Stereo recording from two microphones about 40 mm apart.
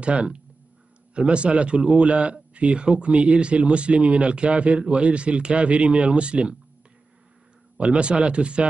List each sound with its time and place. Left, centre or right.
0.0 s a man's voice: right
7.7 s a man's voice: right